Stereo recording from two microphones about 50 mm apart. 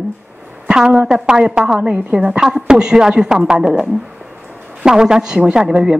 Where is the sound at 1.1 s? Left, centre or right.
Centre.